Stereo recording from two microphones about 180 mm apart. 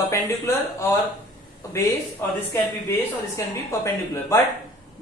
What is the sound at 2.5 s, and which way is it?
Speech, 15° left (ahead or behind).